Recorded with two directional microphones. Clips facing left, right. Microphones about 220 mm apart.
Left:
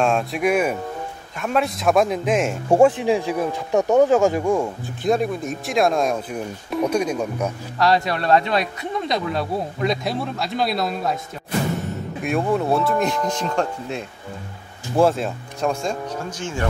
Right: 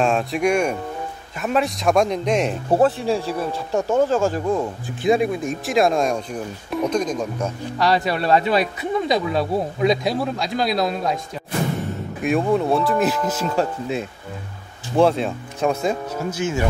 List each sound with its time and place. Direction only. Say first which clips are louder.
0.0 s speech: right 1 dB; centre (ahead or behind)
5.0 s speech: right 2 dB; 5° right (ahead or behind)
7.8 s speech: even; centre (ahead or behind)
12.2 s speech: right 2 dB; centre (ahead or behind)